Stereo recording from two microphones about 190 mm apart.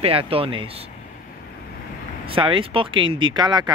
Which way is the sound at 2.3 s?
25° right (ahead or behind).